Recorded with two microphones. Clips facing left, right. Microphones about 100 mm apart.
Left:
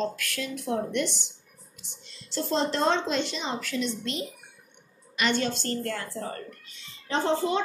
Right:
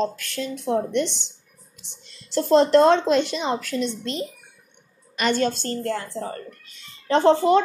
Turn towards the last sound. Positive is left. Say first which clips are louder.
# right 9 dB
turn(degrees=-65)  # may be behind; listen again after turning